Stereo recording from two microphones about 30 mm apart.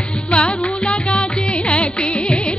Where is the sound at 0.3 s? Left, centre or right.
Left.